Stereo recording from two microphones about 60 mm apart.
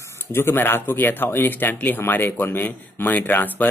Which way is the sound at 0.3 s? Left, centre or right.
Left.